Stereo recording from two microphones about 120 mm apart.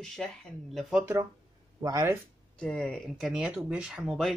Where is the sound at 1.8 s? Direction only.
25° right (ahead or behind).